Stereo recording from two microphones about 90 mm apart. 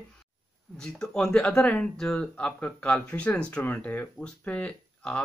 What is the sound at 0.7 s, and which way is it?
Speech, 5° left (ahead or behind).